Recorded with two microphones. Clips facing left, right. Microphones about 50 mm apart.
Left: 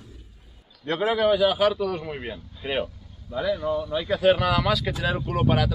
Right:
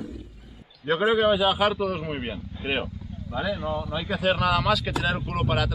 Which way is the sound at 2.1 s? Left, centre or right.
Right.